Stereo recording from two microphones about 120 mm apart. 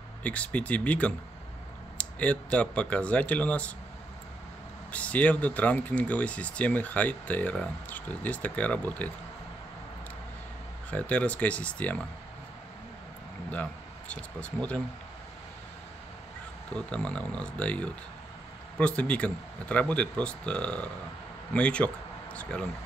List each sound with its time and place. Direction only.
0.2 s speech: 10° left (ahead or behind)
4.9 s speech: 10° left (ahead or behind)
10.9 s speech: 10° left (ahead or behind)
13.5 s speech: 10° left (ahead or behind)
16.7 s speech: 10° left (ahead or behind)